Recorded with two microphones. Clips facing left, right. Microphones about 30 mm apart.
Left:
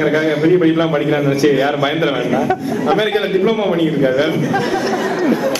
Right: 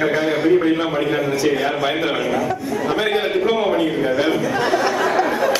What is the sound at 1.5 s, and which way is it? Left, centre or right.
A man's voice, centre.